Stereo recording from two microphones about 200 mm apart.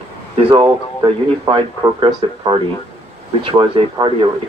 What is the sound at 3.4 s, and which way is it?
Speech, 25° right (ahead or behind).